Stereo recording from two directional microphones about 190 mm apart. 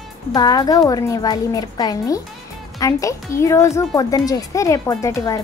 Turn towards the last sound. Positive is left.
turn(degrees=15)  # may be behind; listen again after turning